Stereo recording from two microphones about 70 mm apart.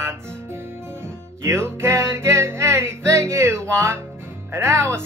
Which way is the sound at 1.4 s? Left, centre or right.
Right.